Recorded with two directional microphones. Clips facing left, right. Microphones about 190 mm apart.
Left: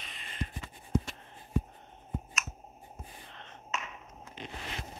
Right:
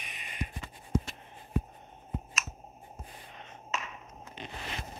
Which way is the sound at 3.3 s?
10° right (ahead or behind).